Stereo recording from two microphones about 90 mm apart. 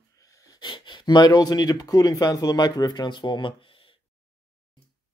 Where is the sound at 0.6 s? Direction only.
60° left (ahead or behind).